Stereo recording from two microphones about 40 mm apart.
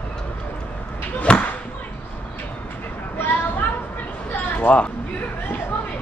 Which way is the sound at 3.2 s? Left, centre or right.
Left.